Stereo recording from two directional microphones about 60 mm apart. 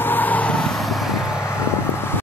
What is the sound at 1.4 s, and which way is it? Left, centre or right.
Vehicle, left.